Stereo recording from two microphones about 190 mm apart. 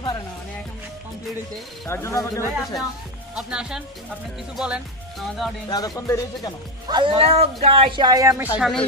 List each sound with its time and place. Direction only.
1.9 s speech: 15° left (ahead or behind)
3.3 s speech: 5° right (ahead or behind)
5.7 s speech: 20° left (ahead or behind)
6.9 s speech: 25° right (ahead or behind)
8.5 s speech: centre (ahead or behind)